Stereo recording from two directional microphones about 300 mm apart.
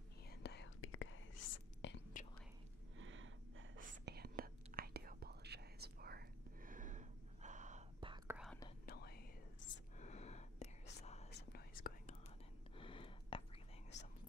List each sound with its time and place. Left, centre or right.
0.3 s whispering: left
1.8 s whispering: left
3.0 s gasp: right
3.8 s whispering: right
8.8 s whispering: left
12.7 s a sound: centre